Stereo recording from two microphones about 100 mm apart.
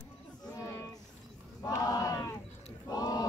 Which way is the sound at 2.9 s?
40° left (ahead or behind).